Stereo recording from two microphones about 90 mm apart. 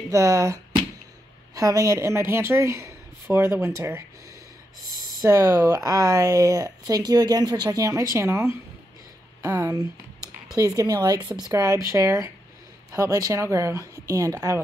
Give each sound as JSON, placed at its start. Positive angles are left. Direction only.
{"t": 0.1, "sound": "speech", "side_deg": -40}
{"t": 5.2, "sound": "speech", "side_deg": -40}